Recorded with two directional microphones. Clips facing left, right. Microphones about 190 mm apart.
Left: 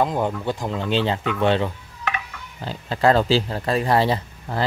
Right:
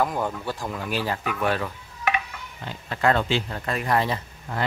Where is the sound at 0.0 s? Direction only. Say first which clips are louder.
Left 4 dB; 20° left (ahead or behind).